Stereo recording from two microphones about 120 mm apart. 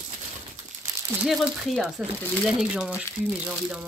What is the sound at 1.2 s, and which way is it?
Speech, centre (ahead or behind).